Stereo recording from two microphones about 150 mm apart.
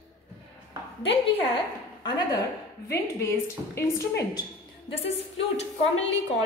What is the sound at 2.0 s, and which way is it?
A woman's voice, 30° left (ahead or behind).